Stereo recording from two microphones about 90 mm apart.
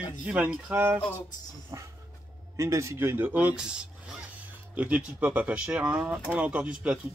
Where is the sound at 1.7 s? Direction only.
45° right (ahead or behind).